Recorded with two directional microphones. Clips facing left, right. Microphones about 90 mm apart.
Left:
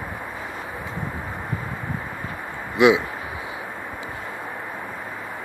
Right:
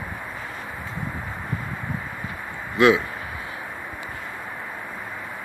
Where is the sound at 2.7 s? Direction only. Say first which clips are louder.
Left 1 dB; 15° left (ahead or behind).